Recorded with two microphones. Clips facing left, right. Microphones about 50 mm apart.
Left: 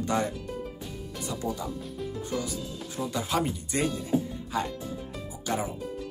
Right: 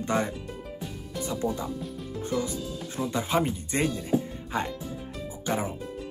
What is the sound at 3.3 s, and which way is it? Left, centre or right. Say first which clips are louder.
Speech: right 2 dB; right.